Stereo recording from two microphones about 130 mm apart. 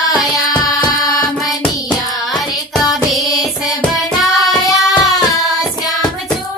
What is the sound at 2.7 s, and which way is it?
Music, centre (ahead or behind).